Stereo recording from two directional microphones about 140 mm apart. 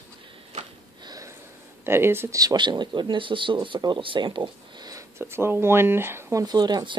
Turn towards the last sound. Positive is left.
turn(degrees=-30)  # may be behind; listen again after turning